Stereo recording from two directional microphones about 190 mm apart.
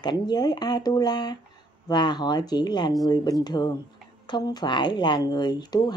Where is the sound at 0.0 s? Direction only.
20° left (ahead or behind).